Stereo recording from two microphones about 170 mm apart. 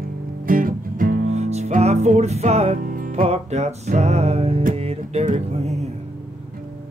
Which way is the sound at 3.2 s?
40° right (ahead or behind).